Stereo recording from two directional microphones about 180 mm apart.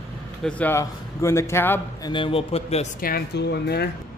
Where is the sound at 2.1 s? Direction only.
30° left (ahead or behind).